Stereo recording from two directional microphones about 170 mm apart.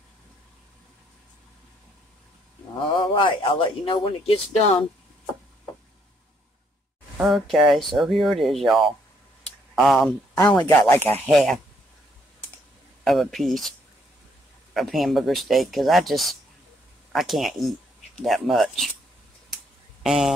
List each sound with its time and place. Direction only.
3.0 s speech: 30° left (ahead or behind)
7.2 s speech: centre (ahead or behind)
10.6 s speech: 15° left (ahead or behind)
11.2 s speech: centre (ahead or behind)
13.0 s speech: centre (ahead or behind)
20.0 s speech: centre (ahead or behind)